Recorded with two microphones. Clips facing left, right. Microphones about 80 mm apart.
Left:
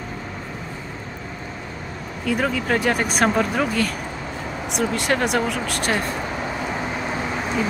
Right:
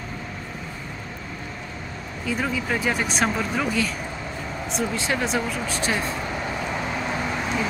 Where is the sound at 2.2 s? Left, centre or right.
Left.